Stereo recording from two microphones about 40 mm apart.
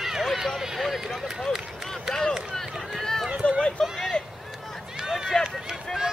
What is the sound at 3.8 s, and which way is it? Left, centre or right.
Vehicle, centre.